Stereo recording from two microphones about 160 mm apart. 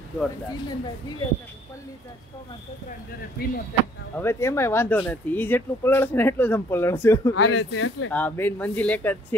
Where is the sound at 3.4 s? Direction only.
70° left (ahead or behind).